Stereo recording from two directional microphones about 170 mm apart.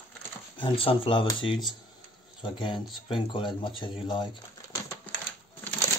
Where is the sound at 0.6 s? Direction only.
30° left (ahead or behind).